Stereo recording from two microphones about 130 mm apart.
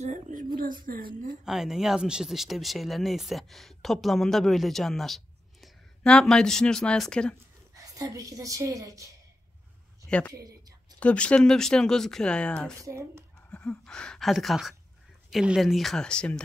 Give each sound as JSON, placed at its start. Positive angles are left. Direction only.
{"t": 0.0, "sound": "a sound", "side_deg": -75}
{"t": 0.8, "sound": "a woman's voice", "side_deg": -90}
{"t": 1.4, "sound": "speech", "side_deg": -5}
{"t": 7.7, "sound": "a woman's voice", "side_deg": -25}
{"t": 10.0, "sound": "speech", "side_deg": 10}
{"t": 12.8, "sound": "speech", "side_deg": -20}
{"t": 13.5, "sound": "speech", "side_deg": 10}